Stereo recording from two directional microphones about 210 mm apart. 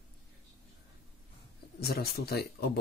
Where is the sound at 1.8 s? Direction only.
45° left (ahead or behind).